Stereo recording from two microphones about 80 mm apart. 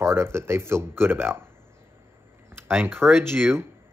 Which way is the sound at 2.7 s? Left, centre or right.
Right.